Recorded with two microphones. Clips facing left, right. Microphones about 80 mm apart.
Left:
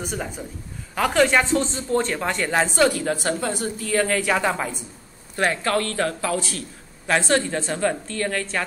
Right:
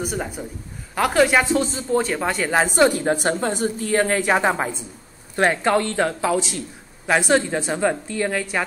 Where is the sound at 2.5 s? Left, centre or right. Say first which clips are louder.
Right 2 dB; centre.